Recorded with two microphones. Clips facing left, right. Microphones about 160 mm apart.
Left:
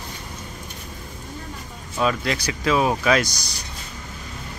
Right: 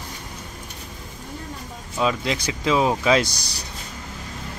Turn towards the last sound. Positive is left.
turn(degrees=-25)  # may be behind; listen again after turning